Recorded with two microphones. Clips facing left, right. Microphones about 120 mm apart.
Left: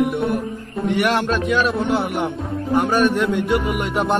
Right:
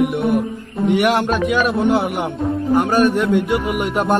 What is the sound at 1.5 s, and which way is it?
Speech, centre (ahead or behind).